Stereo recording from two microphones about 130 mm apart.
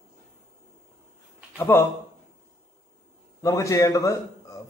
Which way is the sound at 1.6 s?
15° left (ahead or behind).